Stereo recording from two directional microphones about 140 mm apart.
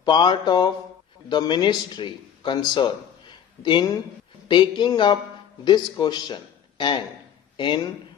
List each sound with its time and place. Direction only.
0.0 s a man's voice: 30° left (ahead or behind)